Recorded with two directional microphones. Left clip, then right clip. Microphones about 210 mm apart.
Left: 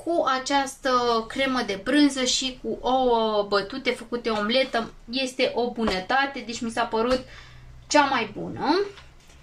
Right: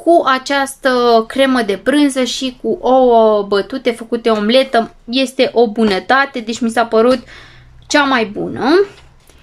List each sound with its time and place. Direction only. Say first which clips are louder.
0.1 s a woman's voice: right 11 dB; 40° right (ahead or behind)